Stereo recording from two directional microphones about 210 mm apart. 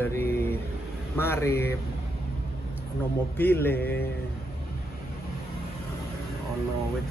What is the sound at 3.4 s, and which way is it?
Speech, 10° left (ahead or behind).